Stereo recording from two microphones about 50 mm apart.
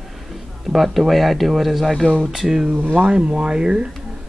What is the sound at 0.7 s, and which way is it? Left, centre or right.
Speech, centre.